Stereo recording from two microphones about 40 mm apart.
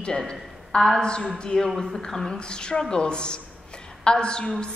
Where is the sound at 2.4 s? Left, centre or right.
Left.